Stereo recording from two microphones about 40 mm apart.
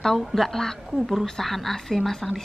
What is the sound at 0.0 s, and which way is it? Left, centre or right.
A woman's voice, centre.